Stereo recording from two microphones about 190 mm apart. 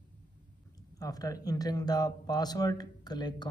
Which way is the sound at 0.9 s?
20° left (ahead or behind).